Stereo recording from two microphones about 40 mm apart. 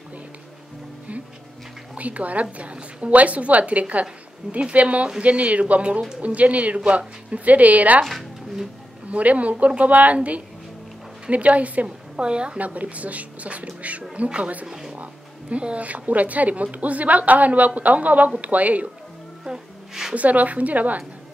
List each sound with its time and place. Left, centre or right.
2.0 s speech: right
8.0 s music: centre
9.1 s speech: right
12.2 s a woman's voice: right
12.5 s speech: right
14.7 s a sound: centre
15.5 s speech: right
19.4 s music: centre
20.2 s speech: right